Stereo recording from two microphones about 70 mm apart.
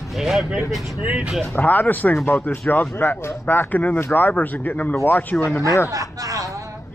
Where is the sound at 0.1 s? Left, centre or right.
Centre.